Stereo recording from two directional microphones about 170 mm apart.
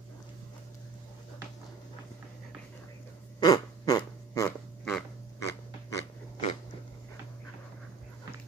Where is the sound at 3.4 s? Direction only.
25° left (ahead or behind).